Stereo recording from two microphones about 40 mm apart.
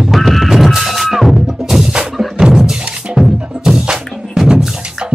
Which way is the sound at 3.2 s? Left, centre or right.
Centre.